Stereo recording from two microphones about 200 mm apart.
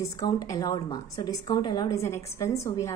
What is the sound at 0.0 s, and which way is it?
A woman's voice, 20° left (ahead or behind).